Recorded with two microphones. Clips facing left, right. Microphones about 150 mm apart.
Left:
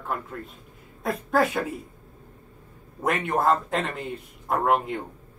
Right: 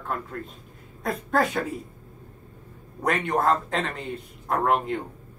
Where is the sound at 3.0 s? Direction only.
Centre (ahead or behind).